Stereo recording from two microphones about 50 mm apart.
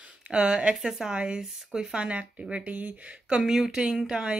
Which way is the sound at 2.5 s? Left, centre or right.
Right.